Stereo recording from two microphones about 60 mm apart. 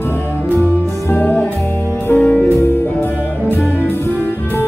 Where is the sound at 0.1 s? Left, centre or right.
Left.